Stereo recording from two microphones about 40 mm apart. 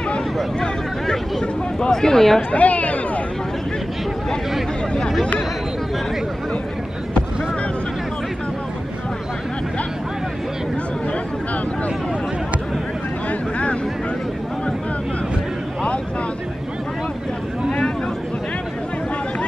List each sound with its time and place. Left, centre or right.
0.6 s speech: centre
2.5 s speech: left
13.3 s a sound: left